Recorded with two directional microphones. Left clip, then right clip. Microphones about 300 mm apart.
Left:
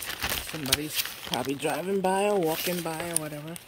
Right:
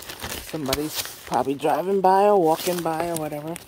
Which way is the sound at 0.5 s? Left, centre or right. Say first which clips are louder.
Right 6 dB; centre.